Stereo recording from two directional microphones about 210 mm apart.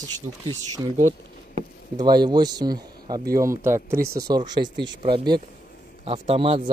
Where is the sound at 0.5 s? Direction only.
15° right (ahead or behind).